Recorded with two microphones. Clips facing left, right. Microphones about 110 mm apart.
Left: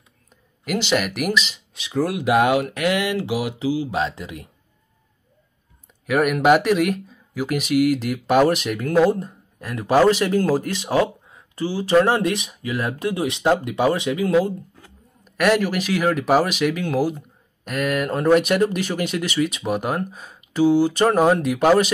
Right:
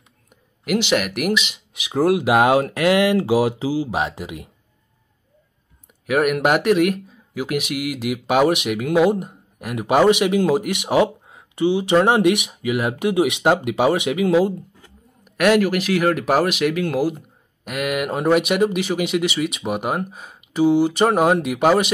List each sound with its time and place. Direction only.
0.7 s speech: 5° right (ahead or behind)
1.9 s speech: 25° right (ahead or behind)
4.2 s speech: 25° right (ahead or behind)
6.0 s speech: 5° right (ahead or behind)
9.1 s a sound: 15° right (ahead or behind)
9.8 s speech: 10° right (ahead or behind)
10.6 s speech: 80° right
11.6 s speech: 20° right (ahead or behind)
12.2 s speech: 80° right
14.2 s speech: 25° right (ahead or behind)
15.2 s speech: 5° right (ahead or behind)